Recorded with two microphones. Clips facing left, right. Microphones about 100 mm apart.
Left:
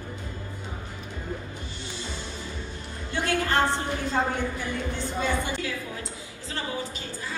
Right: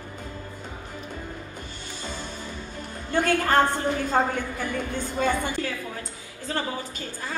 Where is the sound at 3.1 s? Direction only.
50° right (ahead or behind).